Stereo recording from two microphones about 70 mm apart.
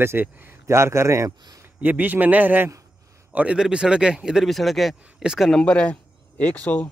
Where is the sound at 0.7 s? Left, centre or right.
Right.